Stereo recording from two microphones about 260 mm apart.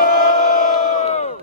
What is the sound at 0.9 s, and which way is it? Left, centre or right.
Crowd, left.